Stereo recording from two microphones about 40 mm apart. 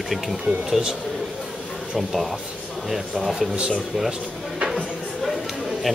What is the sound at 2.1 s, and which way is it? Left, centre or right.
Speech, centre.